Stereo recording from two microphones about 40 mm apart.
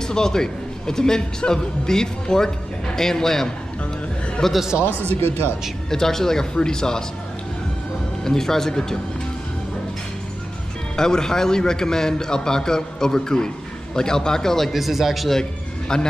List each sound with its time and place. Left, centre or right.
0.0 s a man's voice: centre
5.9 s a man's voice: centre
8.2 s a man's voice: centre
11.0 s a man's voice: centre
14.7 s speech: centre
15.9 s a man's voice: centre